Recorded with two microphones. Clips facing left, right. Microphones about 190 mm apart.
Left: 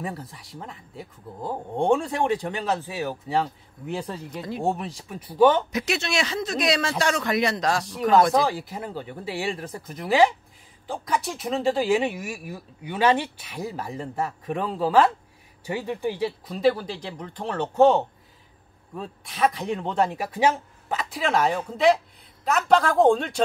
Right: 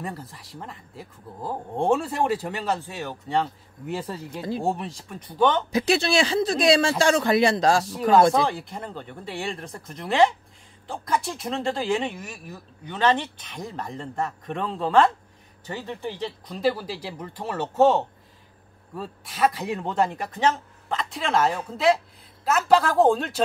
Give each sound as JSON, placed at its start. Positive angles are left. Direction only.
{"t": 0.0, "sound": "speech", "side_deg": 0}
{"t": 4.4, "sound": "speech", "side_deg": -30}
{"t": 4.6, "sound": "speech", "side_deg": 0}
{"t": 5.7, "sound": "speech", "side_deg": -30}
{"t": 8.5, "sound": "speech", "side_deg": 5}